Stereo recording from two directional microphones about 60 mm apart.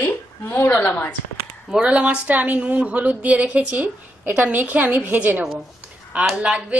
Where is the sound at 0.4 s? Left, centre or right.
Left.